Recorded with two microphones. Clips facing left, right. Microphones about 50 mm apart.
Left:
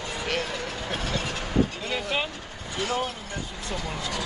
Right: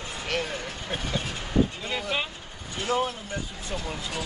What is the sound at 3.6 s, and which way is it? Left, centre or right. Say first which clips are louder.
Speech: left 1 dB; left.